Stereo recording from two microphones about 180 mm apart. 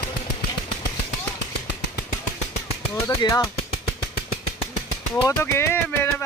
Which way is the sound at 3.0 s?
15° left (ahead or behind).